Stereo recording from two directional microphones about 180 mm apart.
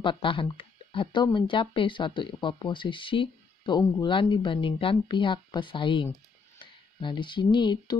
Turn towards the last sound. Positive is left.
turn(degrees=25)  # may be behind; listen again after turning